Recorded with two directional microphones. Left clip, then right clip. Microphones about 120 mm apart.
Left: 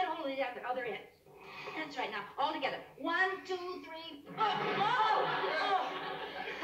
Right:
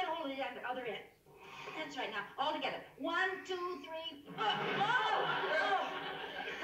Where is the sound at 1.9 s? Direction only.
15° right (ahead or behind).